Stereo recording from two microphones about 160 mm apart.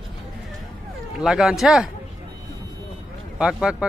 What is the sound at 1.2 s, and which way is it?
Speech, centre (ahead or behind).